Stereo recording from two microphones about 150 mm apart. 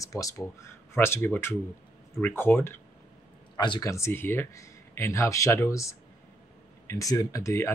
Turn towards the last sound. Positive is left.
turn(degrees=20)  # may be behind; listen again after turning